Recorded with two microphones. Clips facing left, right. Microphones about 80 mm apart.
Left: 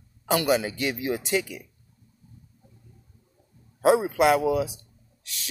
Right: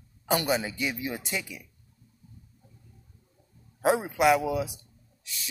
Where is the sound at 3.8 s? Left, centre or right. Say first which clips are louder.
Left 3 dB; left.